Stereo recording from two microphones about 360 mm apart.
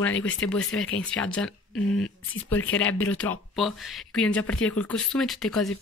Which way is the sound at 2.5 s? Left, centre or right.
Left.